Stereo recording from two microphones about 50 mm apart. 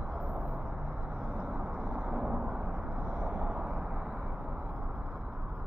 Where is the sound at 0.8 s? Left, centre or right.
Right.